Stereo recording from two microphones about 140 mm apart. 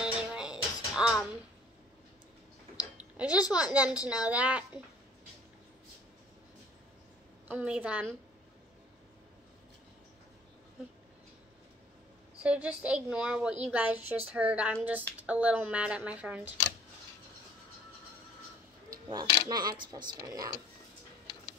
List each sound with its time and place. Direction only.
0.0 s music: 5° right (ahead or behind)
2.8 s speech: 10° right (ahead or behind)
7.4 s a woman's voice: 10° right (ahead or behind)
12.4 s a woman's voice: 10° right (ahead or behind)
18.9 s a sound: 25° right (ahead or behind)
19.5 s speech: 30° right (ahead or behind)